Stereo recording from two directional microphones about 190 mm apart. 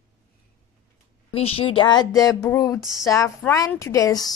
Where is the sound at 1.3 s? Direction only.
30° left (ahead or behind).